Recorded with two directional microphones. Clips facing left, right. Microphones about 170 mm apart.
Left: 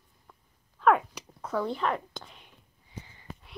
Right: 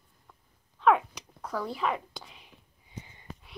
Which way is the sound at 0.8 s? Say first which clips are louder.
Even; centre (ahead or behind).